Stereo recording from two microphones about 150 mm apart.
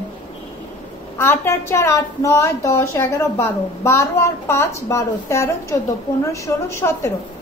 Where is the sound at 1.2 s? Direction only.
15° left (ahead or behind).